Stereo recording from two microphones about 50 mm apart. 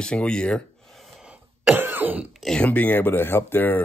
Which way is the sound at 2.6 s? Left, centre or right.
Left.